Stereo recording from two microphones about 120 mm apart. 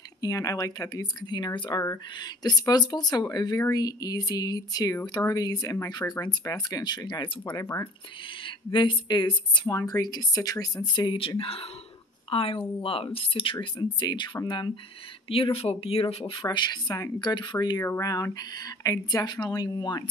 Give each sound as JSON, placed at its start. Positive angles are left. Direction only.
{"t": 0.2, "sound": "speech", "side_deg": 30}
{"t": 7.6, "sound": "speech", "side_deg": 20}
{"t": 8.7, "sound": "speech", "side_deg": 40}
{"t": 11.0, "sound": "speech", "side_deg": 45}
{"t": 13.7, "sound": "speech", "side_deg": 35}
{"t": 16.4, "sound": "speech", "side_deg": 35}